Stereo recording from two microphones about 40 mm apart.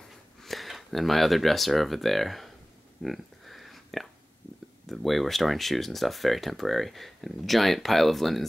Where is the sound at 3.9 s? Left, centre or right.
Centre.